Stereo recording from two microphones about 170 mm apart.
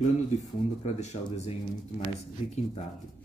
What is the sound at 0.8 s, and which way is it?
Speech, 40° left (ahead or behind).